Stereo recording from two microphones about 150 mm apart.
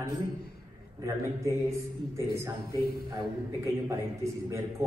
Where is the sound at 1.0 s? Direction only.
20° right (ahead or behind).